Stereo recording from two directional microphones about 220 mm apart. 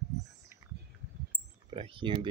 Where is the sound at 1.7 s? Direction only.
25° right (ahead or behind).